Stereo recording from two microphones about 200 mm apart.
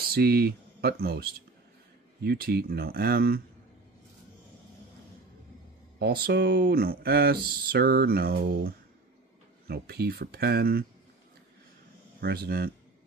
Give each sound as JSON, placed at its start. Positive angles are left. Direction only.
{"t": 0.1, "sound": "speech", "side_deg": -50}
{"t": 5.9, "sound": "speech", "side_deg": -50}
{"t": 12.2, "sound": "speech", "side_deg": -50}